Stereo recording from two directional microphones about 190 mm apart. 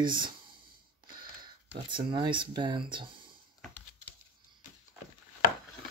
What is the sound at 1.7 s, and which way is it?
Speech, 25° right (ahead or behind).